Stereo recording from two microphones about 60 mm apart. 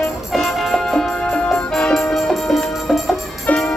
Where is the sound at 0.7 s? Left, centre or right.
Centre.